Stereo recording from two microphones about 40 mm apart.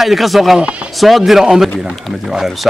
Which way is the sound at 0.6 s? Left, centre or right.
Right.